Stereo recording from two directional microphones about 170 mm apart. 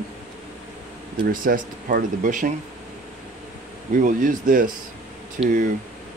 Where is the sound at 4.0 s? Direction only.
50° right (ahead or behind).